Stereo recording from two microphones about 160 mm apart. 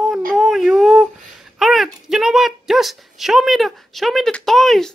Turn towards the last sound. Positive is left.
turn(degrees=0)  # may be behind; listen again after turning